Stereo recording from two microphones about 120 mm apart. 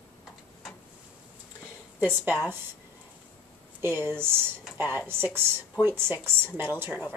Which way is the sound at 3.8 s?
20° right (ahead or behind).